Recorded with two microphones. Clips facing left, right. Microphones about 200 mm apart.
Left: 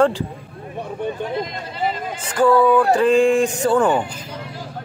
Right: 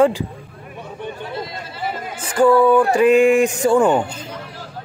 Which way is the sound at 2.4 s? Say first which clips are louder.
Right 2 dB; 15° right (ahead or behind).